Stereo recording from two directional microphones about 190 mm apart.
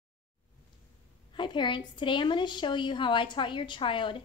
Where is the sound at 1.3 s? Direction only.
25° left (ahead or behind).